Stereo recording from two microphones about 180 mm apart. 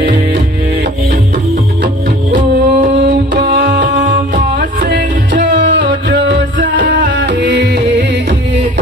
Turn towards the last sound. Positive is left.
turn(degrees=-70)  # may be behind; listen again after turning